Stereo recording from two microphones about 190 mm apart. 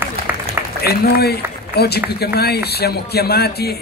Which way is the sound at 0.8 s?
55° left (ahead or behind).